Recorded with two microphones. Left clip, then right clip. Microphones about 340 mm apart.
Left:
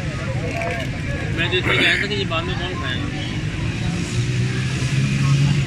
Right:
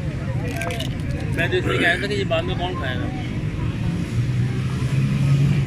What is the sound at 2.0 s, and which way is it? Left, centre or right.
Speech, centre.